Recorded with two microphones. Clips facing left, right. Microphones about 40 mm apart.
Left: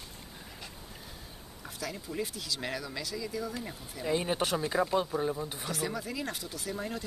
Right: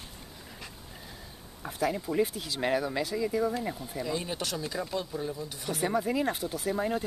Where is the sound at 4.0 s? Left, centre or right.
Left.